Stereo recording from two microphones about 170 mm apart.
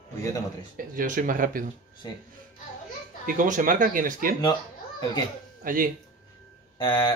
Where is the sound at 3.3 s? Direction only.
50° right (ahead or behind).